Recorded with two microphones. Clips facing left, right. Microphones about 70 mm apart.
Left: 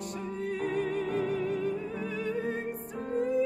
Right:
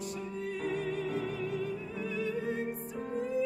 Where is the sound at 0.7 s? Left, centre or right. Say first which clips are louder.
Left 3 dB; left.